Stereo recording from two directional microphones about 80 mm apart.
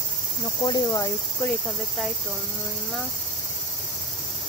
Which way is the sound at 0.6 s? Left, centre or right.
Left.